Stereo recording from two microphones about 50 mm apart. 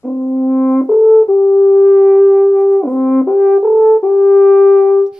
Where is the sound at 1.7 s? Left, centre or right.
Centre.